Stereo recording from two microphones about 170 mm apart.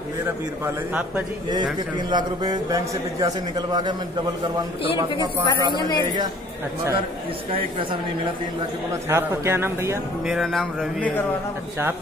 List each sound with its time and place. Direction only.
1.5 s a man's voice: 25° right (ahead or behind)
5.8 s speech: 25° left (ahead or behind)
9.1 s a man's voice: 15° right (ahead or behind)
10.2 s speech: centre (ahead or behind)